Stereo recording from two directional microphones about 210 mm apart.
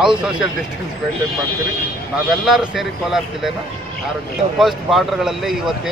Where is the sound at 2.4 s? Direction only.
Centre (ahead or behind).